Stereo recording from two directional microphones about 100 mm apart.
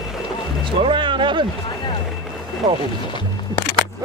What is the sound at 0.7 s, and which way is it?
Music, 55° right (ahead or behind).